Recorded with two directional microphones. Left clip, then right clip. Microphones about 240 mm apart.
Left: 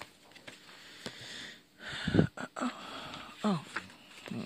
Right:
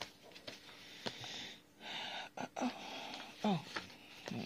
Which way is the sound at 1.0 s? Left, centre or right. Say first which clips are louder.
Left 1 dB; left.